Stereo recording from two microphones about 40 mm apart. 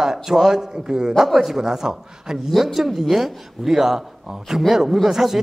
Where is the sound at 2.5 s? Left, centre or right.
Centre.